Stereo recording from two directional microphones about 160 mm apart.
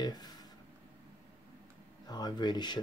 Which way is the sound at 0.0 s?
25° left (ahead or behind).